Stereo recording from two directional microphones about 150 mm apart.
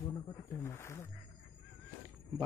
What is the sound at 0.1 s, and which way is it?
Wild animals, 15° left (ahead or behind).